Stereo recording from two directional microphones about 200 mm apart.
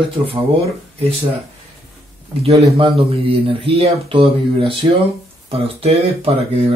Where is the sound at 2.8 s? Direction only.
25° right (ahead or behind).